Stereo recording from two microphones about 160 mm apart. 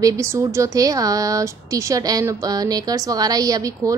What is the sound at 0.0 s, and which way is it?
Speech, 20° right (ahead or behind).